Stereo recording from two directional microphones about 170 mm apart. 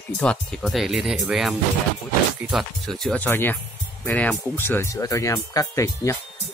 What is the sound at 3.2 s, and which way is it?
Speech, 15° left (ahead or behind).